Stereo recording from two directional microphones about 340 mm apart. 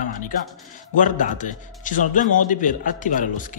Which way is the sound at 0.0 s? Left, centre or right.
Left.